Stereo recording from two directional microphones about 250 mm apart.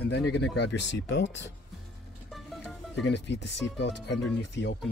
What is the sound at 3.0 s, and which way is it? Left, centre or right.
Speech, left.